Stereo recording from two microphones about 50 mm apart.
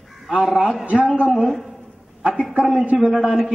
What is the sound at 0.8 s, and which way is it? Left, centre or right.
Speech, right.